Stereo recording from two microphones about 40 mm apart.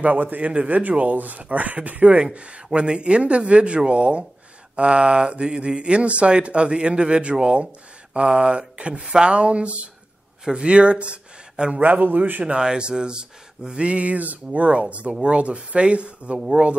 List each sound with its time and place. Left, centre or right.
0.0 s speech: right
11.8 s a man's voice: right
12.4 s speech: right